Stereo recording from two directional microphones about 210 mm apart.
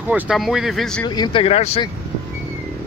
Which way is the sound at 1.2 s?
25° left (ahead or behind).